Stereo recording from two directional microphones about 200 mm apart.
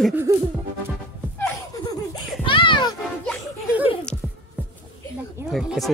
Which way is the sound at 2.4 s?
25° left (ahead or behind).